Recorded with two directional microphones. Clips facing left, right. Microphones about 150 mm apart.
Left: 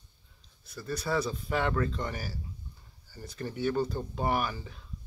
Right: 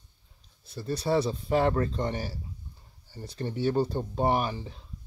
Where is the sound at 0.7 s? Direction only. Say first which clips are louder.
Right 5 dB; 30° right (ahead or behind).